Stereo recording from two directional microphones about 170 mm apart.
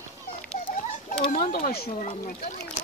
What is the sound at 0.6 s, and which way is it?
Children playing, 35° left (ahead or behind).